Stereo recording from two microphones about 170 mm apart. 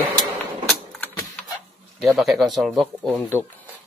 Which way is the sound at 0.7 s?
Centre (ahead or behind).